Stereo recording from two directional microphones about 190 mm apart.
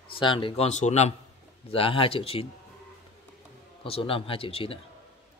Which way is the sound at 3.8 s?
30° left (ahead or behind).